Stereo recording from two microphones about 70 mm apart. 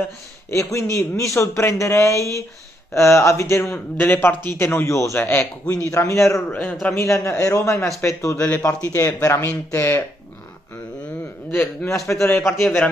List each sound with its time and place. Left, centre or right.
0.5 s speech: left
3.9 s a man's voice: left
4.8 s speech: left
5.1 s speech: left
5.9 s speech: left
6.5 s a man's voice: left
6.9 s speech: left
9.7 s speech: left
11.5 s speech: left